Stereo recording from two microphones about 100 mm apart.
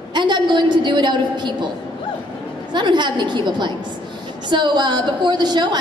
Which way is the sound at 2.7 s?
50° right (ahead or behind).